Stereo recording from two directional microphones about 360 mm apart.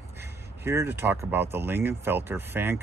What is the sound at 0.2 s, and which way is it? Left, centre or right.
Speech, centre.